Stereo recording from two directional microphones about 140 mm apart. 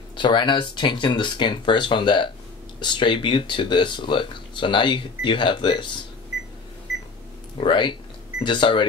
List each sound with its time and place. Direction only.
0.1 s speech: 35° left (ahead or behind)
7.5 s speech: 35° left (ahead or behind)